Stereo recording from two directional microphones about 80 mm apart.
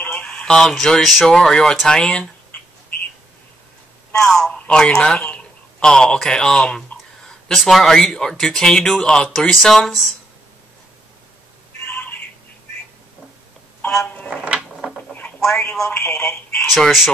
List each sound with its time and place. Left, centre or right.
0.0 s speech: centre
4.3 s speech: centre
11.8 s a sound: centre
14.0 s speech: centre
14.8 s a sound: centre
15.4 s speech: centre